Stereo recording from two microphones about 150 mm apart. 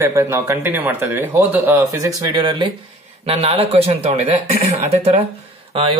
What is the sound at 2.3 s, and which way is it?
Speech, 30° right (ahead or behind).